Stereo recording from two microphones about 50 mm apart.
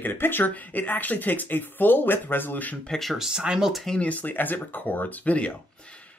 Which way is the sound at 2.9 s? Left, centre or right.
Centre.